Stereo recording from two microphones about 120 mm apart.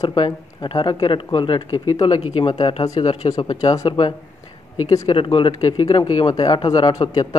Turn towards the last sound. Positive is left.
turn(degrees=35)  # may be behind; listen again after turning